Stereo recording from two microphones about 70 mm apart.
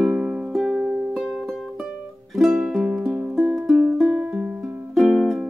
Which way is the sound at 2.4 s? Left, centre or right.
Centre.